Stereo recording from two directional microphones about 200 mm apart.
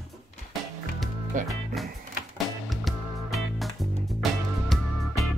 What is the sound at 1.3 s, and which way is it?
Music, 40° right (ahead or behind).